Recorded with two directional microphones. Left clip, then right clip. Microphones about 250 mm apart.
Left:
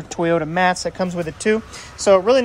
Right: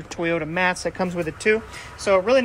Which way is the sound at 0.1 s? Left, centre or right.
Centre.